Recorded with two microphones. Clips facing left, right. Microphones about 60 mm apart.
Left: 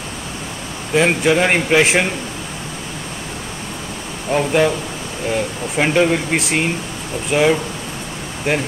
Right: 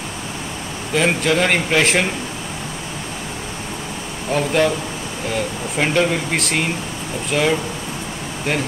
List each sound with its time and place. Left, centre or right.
0.9 s speech: centre
4.3 s speech: centre